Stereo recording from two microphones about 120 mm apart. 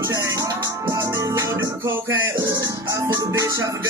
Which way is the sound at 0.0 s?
25° right (ahead or behind).